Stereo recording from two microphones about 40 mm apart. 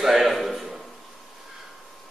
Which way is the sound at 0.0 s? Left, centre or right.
Centre.